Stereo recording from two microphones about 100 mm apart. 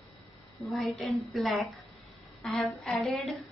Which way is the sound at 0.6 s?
Centre (ahead or behind).